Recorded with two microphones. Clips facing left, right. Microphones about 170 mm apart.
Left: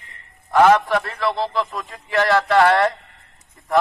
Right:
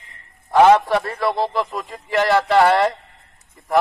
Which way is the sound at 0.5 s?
15° right (ahead or behind).